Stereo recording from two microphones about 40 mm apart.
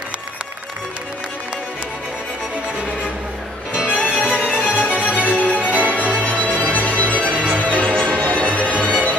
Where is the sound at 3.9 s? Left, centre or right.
Left.